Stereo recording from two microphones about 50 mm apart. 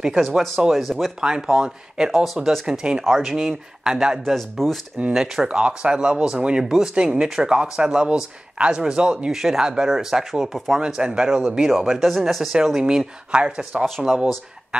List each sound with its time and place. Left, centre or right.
0.0 s speech: centre
1.2 s speech: centre
4.3 s speech: centre
5.1 s a man's voice: centre
9.3 s speech: centre
9.6 s speech: centre
11.0 s speech: centre
12.1 s speech: centre
12.8 s speech: centre
13.8 s speech: centre